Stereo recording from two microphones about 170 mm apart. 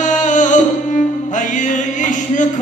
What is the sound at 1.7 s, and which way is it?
Music, 50° left (ahead or behind).